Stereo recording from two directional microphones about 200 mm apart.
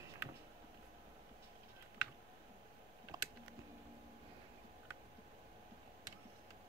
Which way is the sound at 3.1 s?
20° right (ahead or behind).